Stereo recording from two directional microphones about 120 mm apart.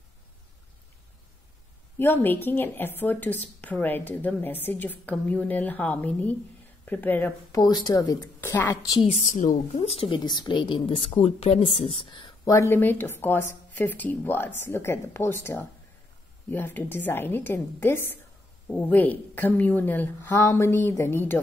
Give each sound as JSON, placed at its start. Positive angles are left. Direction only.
{"t": 2.0, "sound": "a woman's voice", "side_deg": 20}
{"t": 7.5, "sound": "speech", "side_deg": 35}
{"t": 9.0, "sound": "a woman's voice", "side_deg": 80}
{"t": 11.1, "sound": "speech", "side_deg": 60}
{"t": 12.0, "sound": "speech", "side_deg": 45}
{"t": 12.4, "sound": "a woman's voice", "side_deg": 20}